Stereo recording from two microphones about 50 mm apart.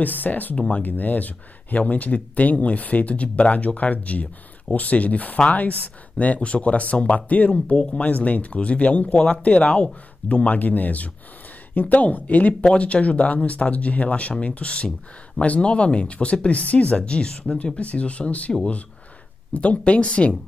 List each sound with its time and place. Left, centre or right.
0.0 s speech: left
19.5 s speech: left